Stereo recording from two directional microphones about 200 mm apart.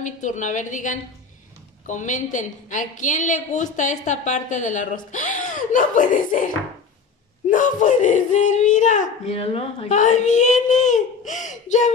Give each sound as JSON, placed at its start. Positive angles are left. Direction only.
{"t": 0.0, "sound": "a woman's voice", "side_deg": 40}